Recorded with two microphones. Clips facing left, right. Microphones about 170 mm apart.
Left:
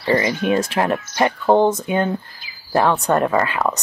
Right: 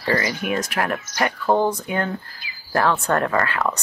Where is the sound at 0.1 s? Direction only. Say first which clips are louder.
Left 5 dB; 20° left (ahead or behind).